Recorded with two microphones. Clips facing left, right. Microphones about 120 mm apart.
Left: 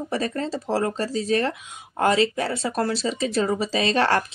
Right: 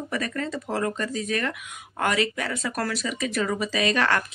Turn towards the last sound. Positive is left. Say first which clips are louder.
# left 3 dB
turn(degrees=30)  # may be behind; listen again after turning